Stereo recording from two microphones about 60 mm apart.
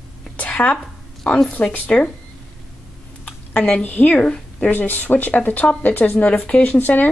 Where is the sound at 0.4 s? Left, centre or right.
Left.